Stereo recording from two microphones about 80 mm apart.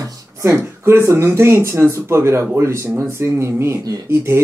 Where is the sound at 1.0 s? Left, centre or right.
Right.